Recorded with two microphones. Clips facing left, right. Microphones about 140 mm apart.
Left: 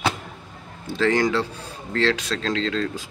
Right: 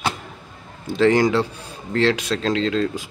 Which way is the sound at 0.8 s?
15° right (ahead or behind).